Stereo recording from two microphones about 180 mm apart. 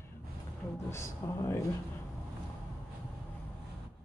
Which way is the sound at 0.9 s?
15° left (ahead or behind).